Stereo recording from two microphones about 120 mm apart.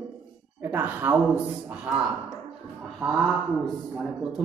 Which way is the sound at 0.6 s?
15° right (ahead or behind).